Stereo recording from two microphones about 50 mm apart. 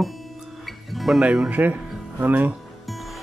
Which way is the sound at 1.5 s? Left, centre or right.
Right.